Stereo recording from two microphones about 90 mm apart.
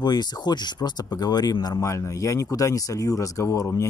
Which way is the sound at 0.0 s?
50° left (ahead or behind).